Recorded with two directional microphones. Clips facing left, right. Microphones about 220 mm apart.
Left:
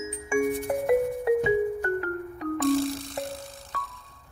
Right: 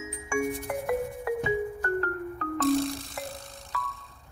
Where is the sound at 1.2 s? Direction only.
30° left (ahead or behind).